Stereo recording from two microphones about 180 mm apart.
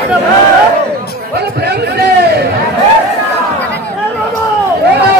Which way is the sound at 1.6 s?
65° right (ahead or behind).